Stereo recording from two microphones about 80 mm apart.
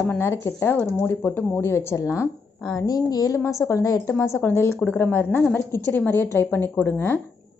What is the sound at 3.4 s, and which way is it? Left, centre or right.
Speech, left.